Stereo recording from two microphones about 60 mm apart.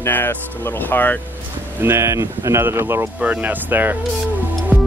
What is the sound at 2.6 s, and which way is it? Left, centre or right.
Speech, right.